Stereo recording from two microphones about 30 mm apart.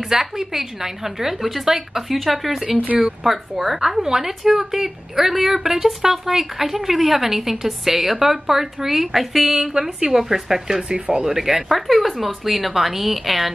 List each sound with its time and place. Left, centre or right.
0.0 s a woman's voice: centre
9.6 s a woman's voice: centre
10.2 s speech: centre
10.8 s speech: right
11.2 s speech: centre
11.7 s a woman's voice: centre